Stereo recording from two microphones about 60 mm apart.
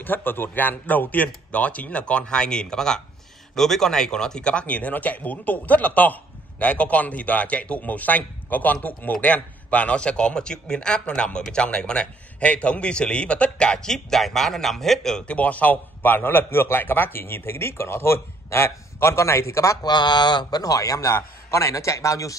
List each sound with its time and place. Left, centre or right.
0.0 s a man's voice: left; by 15.2 s centre
15.2 s a man's voice: left
20.5 s speech: left
21.1 s a man's voice: left